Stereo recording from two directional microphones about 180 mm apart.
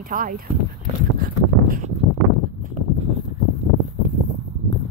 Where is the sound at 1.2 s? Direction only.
50° right (ahead or behind).